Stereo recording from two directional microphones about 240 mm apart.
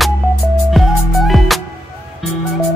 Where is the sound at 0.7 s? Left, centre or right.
Centre.